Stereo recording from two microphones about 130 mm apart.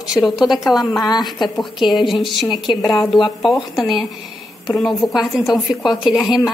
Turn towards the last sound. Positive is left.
turn(degrees=-5)  # may be behind; listen again after turning